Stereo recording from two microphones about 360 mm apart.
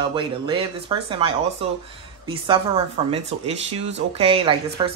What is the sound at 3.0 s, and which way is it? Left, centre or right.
Speech, centre.